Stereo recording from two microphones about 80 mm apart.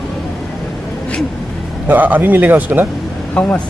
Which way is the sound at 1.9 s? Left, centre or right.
Right.